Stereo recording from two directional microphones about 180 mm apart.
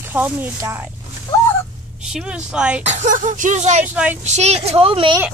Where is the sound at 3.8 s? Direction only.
10° right (ahead or behind).